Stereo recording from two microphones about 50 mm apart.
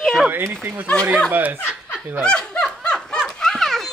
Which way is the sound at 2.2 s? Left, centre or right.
Centre.